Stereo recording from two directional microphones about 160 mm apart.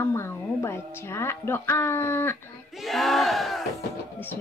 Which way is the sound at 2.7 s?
Centre (ahead or behind).